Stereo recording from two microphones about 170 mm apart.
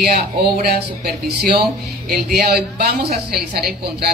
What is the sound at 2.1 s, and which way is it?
A woman's voice, 65° right (ahead or behind).